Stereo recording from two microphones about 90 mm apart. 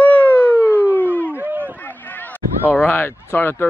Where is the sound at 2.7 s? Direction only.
25° left (ahead or behind).